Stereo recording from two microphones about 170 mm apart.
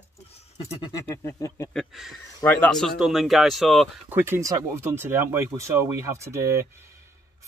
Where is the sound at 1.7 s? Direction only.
Centre (ahead or behind).